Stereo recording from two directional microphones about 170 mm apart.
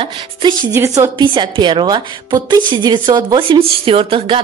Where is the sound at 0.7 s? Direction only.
15° right (ahead or behind).